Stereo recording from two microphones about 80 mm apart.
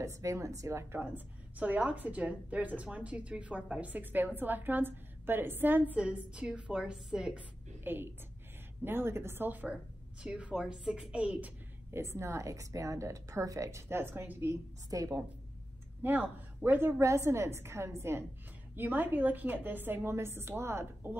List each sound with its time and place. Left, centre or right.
0.0 s a woman's voice: right
0.9 s a woman's voice: right
7.8 s a woman's voice: right
11.9 s a woman's voice: right
14.5 s a woman's voice: right
16.0 s speech: right
17.0 s a woman's voice: right